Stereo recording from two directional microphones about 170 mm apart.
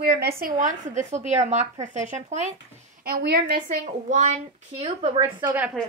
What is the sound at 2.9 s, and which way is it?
Speech, 65° right (ahead or behind).